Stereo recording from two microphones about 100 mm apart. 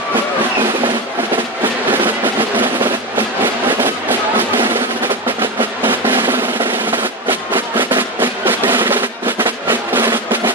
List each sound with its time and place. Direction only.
2.5 s music: 20° right (ahead or behind)
5.9 s drum roll: 20° right (ahead or behind)